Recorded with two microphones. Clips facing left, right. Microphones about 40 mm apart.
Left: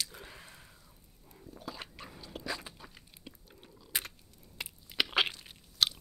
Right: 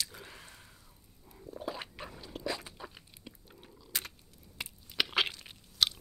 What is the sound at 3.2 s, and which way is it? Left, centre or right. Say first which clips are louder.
Biting: even; centre.